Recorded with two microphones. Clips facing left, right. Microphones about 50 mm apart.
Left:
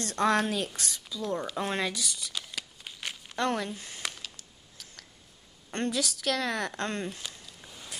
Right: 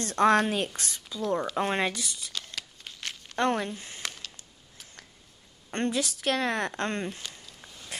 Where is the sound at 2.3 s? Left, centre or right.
Centre.